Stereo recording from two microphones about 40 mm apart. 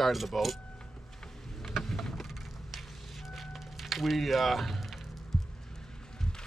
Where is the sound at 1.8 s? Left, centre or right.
Centre.